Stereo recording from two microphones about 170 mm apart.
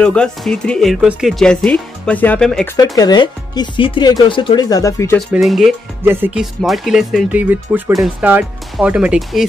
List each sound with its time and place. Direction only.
0.0 s speech: 5° left (ahead or behind)
3.0 s speech: 25° left (ahead or behind)
5.3 s speech: centre (ahead or behind)